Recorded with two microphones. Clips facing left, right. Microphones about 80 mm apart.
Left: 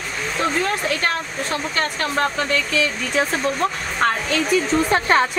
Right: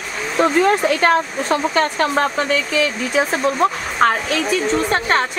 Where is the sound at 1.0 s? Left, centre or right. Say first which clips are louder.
Right 7 dB; right.